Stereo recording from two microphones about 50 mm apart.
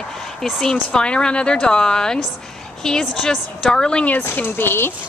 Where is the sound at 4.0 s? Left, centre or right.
Left.